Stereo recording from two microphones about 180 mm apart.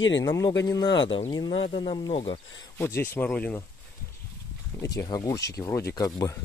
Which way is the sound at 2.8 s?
15° left (ahead or behind).